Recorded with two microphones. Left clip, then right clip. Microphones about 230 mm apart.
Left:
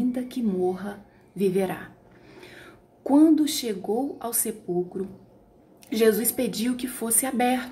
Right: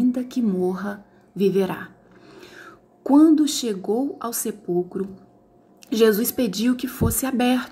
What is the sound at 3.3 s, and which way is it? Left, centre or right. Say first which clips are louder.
A woman's voice: right 3 dB; centre.